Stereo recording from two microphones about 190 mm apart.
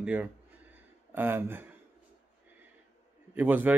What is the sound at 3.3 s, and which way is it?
Speech, 10° right (ahead or behind).